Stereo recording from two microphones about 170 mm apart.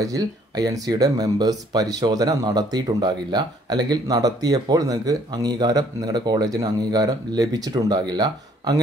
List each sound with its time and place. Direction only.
0.0 s speech: 20° right (ahead or behind)